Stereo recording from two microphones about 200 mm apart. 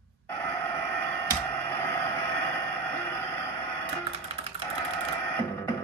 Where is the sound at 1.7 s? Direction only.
10° left (ahead or behind).